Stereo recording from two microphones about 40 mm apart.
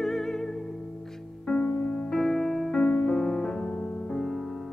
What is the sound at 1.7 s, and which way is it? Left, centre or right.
Music, left.